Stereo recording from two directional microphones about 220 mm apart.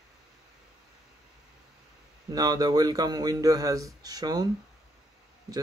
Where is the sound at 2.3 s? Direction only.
15° right (ahead or behind).